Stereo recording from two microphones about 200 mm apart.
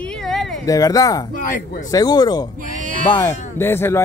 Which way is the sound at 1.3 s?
45° left (ahead or behind).